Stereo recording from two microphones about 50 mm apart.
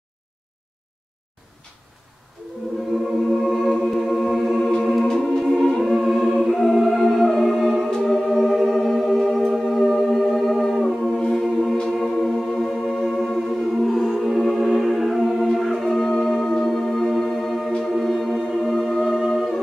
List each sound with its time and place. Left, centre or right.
3.4 s a capella: centre
4.6 s music: centre